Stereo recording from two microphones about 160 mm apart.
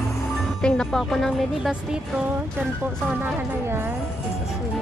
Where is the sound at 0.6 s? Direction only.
5° left (ahead or behind).